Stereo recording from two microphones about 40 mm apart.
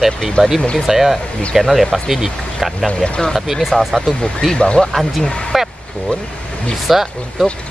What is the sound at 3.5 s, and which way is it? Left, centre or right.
Speech, centre.